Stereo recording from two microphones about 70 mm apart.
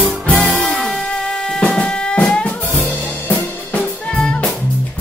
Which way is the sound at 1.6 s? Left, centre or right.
Centre.